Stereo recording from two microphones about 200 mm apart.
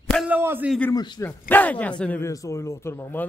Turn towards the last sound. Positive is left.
turn(degrees=10)  # may be behind; listen again after turning